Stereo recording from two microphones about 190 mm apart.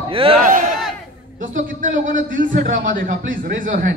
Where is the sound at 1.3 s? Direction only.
45° right (ahead or behind).